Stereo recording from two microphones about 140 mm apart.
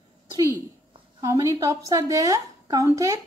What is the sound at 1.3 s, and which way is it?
A woman's voice, 25° right (ahead or behind).